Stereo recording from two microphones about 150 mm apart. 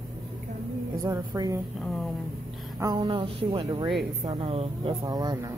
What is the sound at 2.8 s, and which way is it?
Speech, 25° right (ahead or behind).